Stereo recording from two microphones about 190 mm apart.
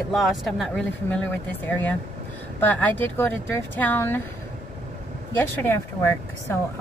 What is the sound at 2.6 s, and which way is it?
Speech, 10° left (ahead or behind).